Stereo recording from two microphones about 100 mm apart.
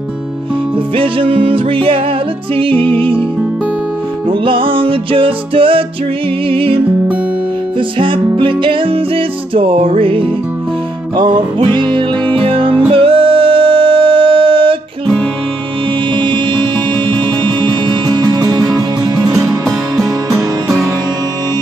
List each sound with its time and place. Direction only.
0.9 s music: 60° right (ahead or behind)
4.3 s music: 60° right (ahead or behind)
8.0 s music: 60° right (ahead or behind)
16.2 s music: 50° right (ahead or behind)